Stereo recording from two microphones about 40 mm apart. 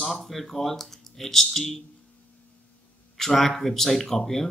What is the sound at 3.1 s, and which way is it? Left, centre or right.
Speech, centre.